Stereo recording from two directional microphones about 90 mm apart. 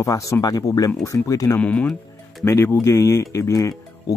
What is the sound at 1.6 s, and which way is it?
Speech, 15° left (ahead or behind).